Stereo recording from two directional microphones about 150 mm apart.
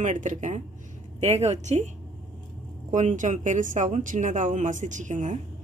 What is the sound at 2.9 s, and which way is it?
Speech, 55° right (ahead or behind).